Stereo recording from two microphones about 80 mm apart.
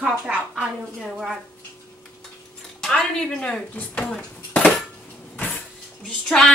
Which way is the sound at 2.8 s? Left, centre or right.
Centre.